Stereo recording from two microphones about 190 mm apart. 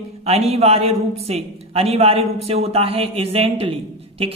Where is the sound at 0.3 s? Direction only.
35° right (ahead or behind).